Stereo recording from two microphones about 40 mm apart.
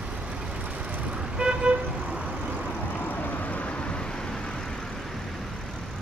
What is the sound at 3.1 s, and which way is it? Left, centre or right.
Vehicle, left.